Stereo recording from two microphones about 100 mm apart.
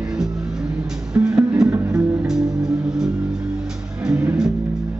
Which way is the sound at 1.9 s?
5° right (ahead or behind).